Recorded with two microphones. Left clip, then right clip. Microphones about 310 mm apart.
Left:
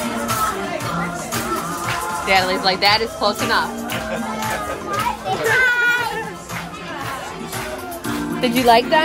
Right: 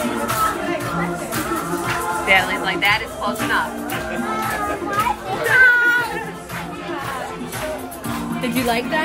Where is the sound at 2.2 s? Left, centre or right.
Centre.